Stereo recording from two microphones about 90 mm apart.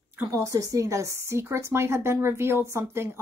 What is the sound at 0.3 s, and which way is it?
A woman's voice, 40° right (ahead or behind).